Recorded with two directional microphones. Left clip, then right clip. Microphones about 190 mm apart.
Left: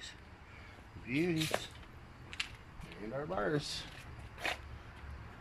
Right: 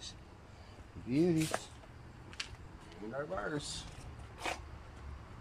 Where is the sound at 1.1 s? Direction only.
Centre (ahead or behind).